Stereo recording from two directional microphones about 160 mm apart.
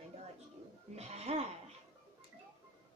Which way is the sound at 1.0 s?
45° right (ahead or behind).